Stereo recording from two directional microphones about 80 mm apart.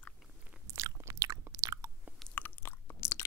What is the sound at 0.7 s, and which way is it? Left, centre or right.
Chewing, right.